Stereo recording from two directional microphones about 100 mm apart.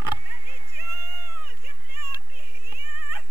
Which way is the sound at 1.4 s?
20° right (ahead or behind).